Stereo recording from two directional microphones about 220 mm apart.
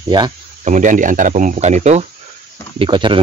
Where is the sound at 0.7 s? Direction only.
35° right (ahead or behind).